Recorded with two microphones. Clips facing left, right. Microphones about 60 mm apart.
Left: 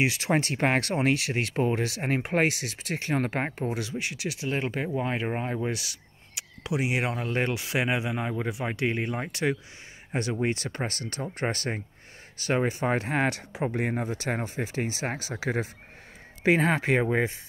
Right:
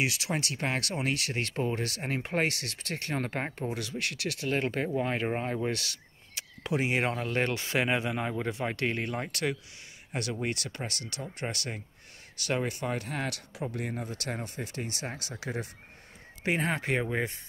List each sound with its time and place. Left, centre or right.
0.0 s speech: left
2.4 s speech: centre; by 14.1 s left
14.3 s speech: left
16.4 s speech: left